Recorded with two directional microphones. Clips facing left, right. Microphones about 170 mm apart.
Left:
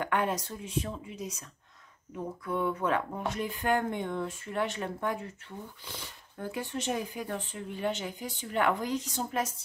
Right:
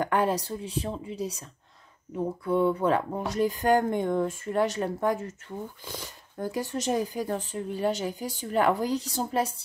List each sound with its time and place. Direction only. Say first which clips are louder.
0.0 s speech: right 4 dB; 35° right (ahead or behind)